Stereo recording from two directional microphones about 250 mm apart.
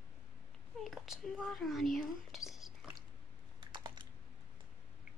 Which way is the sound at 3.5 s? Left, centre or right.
Centre.